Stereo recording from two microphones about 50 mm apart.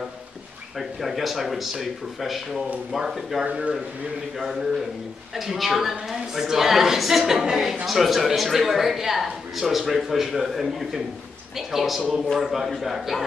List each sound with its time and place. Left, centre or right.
0.7 s a woman's voice: centre
5.3 s a woman's voice: centre